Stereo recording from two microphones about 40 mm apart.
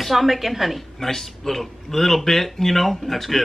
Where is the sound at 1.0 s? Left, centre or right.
Centre.